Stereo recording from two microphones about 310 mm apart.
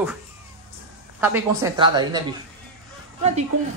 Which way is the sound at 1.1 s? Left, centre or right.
Centre.